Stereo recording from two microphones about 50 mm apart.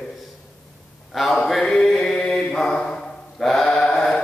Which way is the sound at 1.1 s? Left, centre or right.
Centre.